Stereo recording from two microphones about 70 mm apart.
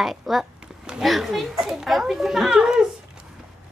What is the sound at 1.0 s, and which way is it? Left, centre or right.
Speech, centre.